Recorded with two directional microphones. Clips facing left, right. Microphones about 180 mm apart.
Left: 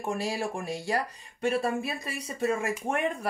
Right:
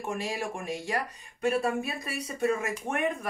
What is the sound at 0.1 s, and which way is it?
Speech, 35° left (ahead or behind).